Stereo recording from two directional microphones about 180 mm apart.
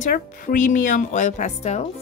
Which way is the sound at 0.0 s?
50° left (ahead or behind).